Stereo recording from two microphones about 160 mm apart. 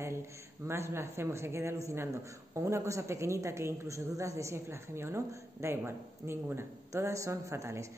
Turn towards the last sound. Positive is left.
turn(degrees=-20)  # may be behind; listen again after turning